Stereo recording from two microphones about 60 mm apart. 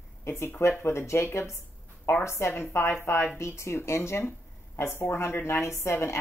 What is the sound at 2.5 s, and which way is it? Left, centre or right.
A woman's voice, left.